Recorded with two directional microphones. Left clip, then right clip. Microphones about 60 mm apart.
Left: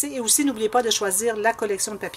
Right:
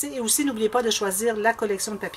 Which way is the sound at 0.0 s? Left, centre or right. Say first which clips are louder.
Left 2 dB; left.